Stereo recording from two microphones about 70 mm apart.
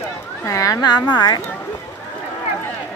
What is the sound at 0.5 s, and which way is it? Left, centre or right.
Speech, left.